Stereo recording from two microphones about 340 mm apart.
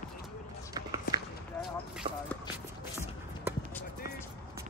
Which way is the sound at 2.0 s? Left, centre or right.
Centre.